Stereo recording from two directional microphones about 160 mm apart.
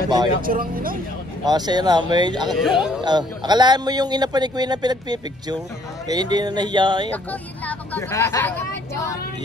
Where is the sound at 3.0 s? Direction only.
25° right (ahead or behind).